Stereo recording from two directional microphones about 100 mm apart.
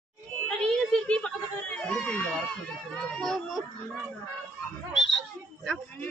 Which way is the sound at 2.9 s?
5° left (ahead or behind).